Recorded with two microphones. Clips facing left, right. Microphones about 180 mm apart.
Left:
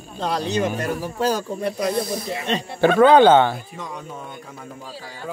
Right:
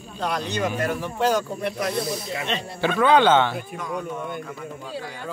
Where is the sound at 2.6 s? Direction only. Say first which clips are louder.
Left 9 dB; 50° left (ahead or behind).